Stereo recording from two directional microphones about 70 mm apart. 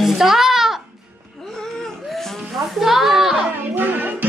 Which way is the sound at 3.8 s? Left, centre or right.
Right.